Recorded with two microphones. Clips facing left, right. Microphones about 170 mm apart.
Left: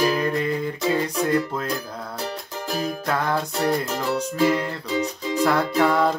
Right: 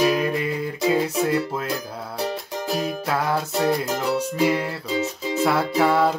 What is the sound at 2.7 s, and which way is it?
Music, 5° right (ahead or behind).